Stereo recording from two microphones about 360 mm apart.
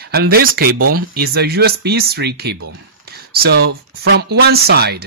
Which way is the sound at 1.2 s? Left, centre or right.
Right.